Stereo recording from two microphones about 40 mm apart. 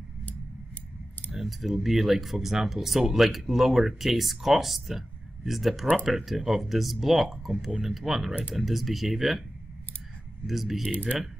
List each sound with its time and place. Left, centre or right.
1.3 s speech: centre
10.4 s speech: centre